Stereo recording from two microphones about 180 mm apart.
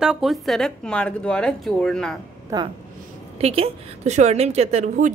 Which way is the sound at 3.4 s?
35° right (ahead or behind).